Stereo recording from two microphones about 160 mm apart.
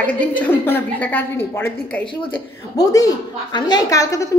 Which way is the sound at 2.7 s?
20° left (ahead or behind).